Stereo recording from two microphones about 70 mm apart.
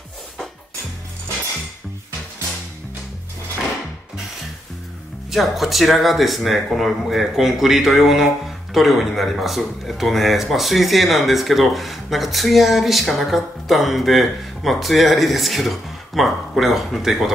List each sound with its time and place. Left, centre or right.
5.3 s speech: centre